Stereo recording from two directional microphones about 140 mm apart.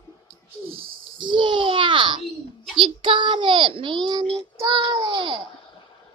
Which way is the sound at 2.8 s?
35° right (ahead or behind).